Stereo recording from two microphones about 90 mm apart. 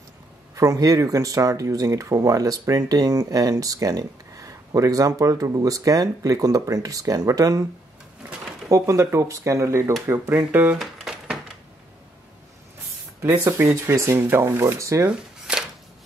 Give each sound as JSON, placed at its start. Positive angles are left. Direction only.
{"t": 0.6, "sound": "speech", "side_deg": -35}
{"t": 8.6, "sound": "speech", "side_deg": -35}
{"t": 10.8, "sound": "a sound", "side_deg": -5}
{"t": 13.2, "sound": "speech", "side_deg": -30}
{"t": 15.0, "sound": "shuffling cards", "side_deg": -10}